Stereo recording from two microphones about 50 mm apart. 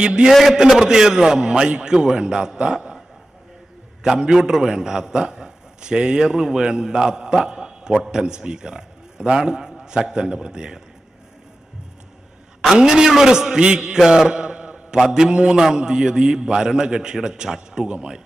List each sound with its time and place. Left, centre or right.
0.0 s a man's voice: centre
0.3 s a man's voice: centre
0.6 s a man's voice: centre
4.0 s a man's voice: centre
12.7 s a man's voice: centre